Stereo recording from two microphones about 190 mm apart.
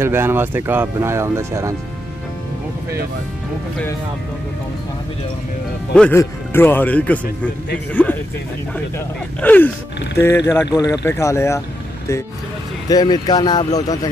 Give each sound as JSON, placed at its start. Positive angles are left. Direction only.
{"t": 0.0, "sound": "speech", "side_deg": -10}
{"t": 5.9, "sound": "speech", "side_deg": 10}
{"t": 12.8, "sound": "speech", "side_deg": 20}